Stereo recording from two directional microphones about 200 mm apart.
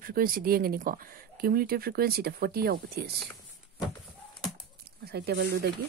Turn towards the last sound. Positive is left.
turn(degrees=-55)  # may be behind; listen again after turning